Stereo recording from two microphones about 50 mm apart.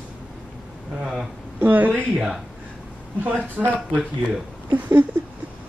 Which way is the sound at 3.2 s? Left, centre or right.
Right.